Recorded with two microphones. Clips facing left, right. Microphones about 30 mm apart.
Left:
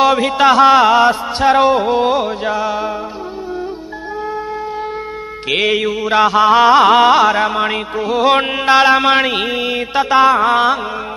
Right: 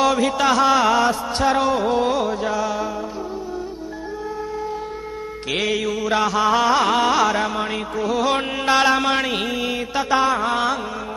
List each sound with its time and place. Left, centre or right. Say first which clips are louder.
0.0 s music: left 6 dB; left
5.5 s music: left 7 dB; left